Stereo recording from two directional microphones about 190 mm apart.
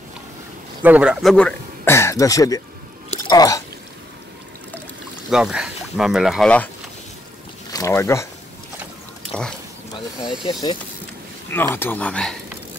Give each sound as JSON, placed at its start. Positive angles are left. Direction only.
{"t": 0.8, "sound": "speech", "side_deg": -5}
{"t": 5.3, "sound": "speech", "side_deg": -5}
{"t": 7.7, "sound": "speech", "side_deg": 15}
{"t": 10.4, "sound": "speech", "side_deg": 25}
{"t": 11.5, "sound": "speech", "side_deg": 10}